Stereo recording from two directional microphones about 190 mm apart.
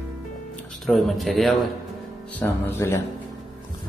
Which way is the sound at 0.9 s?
Centre (ahead or behind).